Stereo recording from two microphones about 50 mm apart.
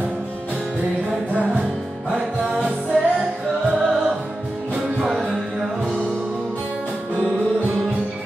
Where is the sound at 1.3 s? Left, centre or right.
Right.